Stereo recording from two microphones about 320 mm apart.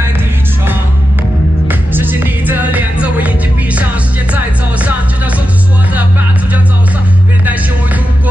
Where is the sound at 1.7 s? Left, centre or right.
Centre.